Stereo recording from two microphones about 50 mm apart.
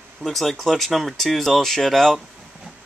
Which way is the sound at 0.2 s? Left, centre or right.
Centre.